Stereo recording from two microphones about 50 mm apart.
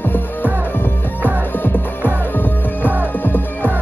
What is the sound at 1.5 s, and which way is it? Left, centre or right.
Music, left.